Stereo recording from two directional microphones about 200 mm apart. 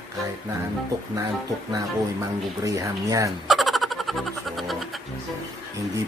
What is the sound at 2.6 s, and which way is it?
Speech, 15° right (ahead or behind).